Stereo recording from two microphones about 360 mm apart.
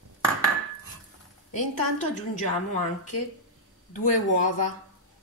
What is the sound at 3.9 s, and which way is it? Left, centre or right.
Speech, left.